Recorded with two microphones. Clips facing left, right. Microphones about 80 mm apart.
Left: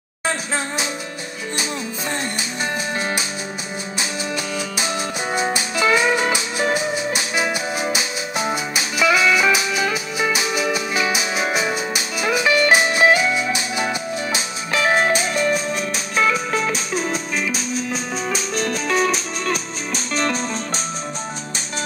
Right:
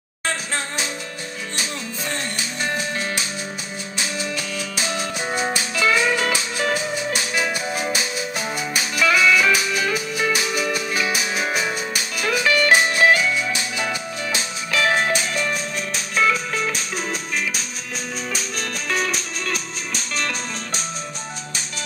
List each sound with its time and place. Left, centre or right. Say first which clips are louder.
3.0 s music: left 2 dB; left
18.3 s music: left 5 dB; left